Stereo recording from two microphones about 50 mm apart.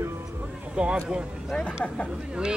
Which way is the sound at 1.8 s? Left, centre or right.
Left.